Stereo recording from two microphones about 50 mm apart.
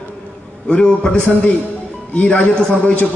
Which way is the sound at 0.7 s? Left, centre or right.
Left.